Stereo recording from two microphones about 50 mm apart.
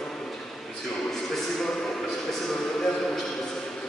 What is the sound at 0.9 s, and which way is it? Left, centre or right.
A man's voice, centre.